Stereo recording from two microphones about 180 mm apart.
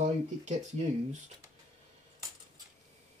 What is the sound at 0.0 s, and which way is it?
Speech, 40° right (ahead or behind).